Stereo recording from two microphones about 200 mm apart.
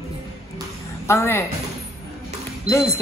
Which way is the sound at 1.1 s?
10° left (ahead or behind).